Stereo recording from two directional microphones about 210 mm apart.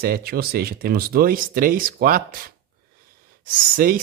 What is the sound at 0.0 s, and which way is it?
Speech, 45° right (ahead or behind).